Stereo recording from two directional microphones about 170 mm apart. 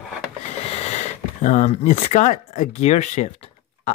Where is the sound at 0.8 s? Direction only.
40° left (ahead or behind).